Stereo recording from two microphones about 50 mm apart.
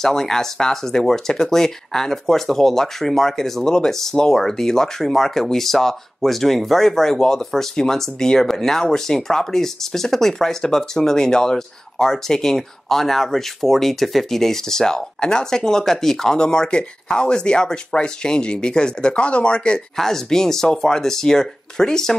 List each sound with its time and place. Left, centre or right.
0.0 s speech: centre
20.0 s speech: centre